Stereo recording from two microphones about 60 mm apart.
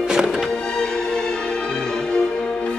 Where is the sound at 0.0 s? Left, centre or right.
Centre.